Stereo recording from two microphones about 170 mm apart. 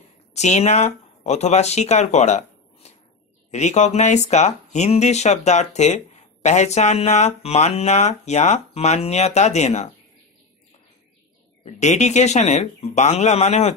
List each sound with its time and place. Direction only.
0.3 s speech: 40° left (ahead or behind)
11.6 s speech: 45° left (ahead or behind)